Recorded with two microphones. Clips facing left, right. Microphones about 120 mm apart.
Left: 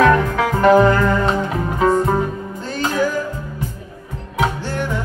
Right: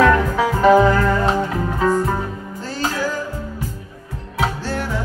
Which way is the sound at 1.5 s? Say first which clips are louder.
Left 2 dB; 20° left (ahead or behind).